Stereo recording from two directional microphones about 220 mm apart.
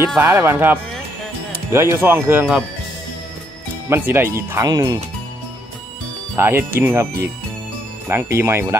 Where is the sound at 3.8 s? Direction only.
10° right (ahead or behind).